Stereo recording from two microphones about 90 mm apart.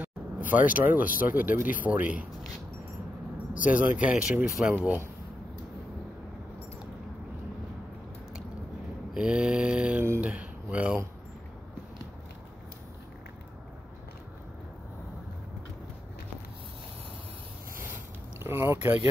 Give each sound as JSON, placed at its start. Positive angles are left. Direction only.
{"t": 0.0, "sound": "speech", "side_deg": -20}
{"t": 3.7, "sound": "speech", "side_deg": -15}
{"t": 4.7, "sound": "speech", "side_deg": -25}
{"t": 9.1, "sound": "speech", "side_deg": -10}
{"t": 18.4, "sound": "speech", "side_deg": -30}